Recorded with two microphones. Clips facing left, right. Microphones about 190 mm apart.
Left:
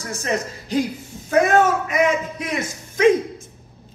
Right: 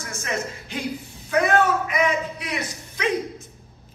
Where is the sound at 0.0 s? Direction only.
35° left (ahead or behind).